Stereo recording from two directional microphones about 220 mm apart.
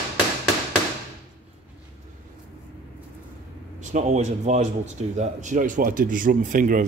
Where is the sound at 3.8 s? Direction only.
30° right (ahead or behind).